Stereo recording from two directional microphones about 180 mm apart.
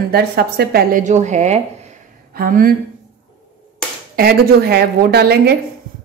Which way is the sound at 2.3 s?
50° right (ahead or behind).